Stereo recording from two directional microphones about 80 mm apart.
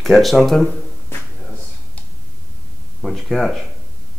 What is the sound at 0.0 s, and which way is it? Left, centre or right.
Speech, centre.